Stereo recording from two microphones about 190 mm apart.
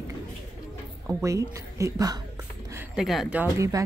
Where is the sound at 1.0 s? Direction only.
15° right (ahead or behind).